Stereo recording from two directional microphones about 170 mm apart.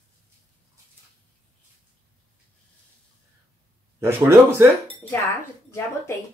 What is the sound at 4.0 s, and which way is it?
Speech, 15° right (ahead or behind).